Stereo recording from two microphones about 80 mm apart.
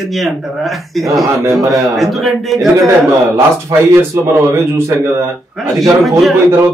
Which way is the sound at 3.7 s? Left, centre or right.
Right.